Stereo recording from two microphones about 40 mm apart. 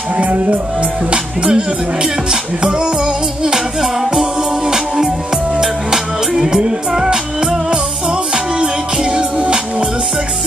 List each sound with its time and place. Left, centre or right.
0.2 s music: right
1.1 s music: right
3.4 s music: centre
9.1 s music: right